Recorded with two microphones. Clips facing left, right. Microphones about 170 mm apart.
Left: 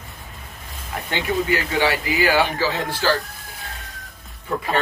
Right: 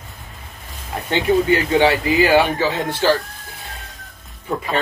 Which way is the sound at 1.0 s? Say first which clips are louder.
Right 6 dB; 25° right (ahead or behind).